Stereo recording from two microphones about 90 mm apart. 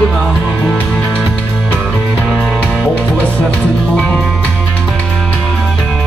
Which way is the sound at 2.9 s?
15° left (ahead or behind).